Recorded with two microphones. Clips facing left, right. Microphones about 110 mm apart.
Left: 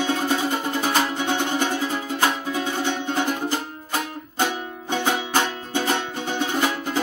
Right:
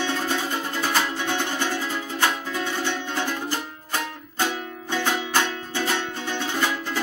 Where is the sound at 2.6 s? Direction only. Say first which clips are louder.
Left 2 dB; 15° left (ahead or behind).